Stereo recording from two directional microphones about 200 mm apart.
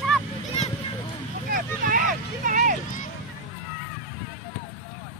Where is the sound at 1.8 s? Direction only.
45° right (ahead or behind).